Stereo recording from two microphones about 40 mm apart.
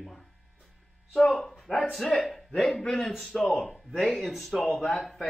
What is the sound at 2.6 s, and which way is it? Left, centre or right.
Speech, centre.